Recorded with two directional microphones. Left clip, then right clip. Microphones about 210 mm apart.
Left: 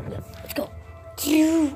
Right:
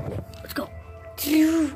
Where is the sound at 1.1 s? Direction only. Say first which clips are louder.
Left 1 dB; 10° left (ahead or behind).